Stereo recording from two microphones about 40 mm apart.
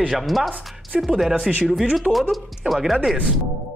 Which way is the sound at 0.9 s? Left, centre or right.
Centre.